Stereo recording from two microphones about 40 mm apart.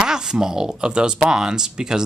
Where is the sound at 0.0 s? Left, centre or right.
Centre.